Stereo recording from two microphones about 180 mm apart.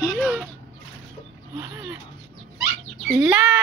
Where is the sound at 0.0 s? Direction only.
Centre (ahead or behind).